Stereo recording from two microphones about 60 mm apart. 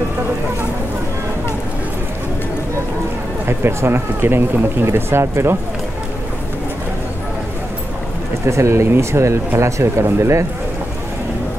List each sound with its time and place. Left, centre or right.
3.4 s speech: right
8.5 s speech: right